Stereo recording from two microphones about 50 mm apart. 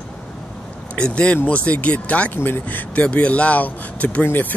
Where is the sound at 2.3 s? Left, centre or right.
Left.